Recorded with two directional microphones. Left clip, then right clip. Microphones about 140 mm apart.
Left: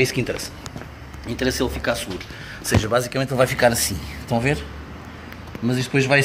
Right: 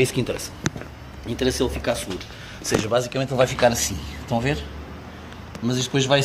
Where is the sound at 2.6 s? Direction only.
Centre (ahead or behind).